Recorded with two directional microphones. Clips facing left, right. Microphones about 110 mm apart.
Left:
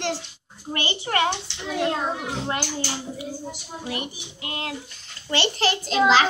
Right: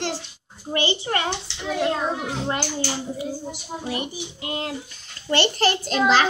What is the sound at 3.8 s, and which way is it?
Speech, 30° right (ahead or behind).